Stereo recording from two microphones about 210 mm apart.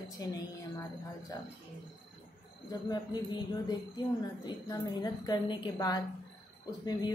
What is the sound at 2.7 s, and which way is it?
A woman's voice, 20° left (ahead or behind).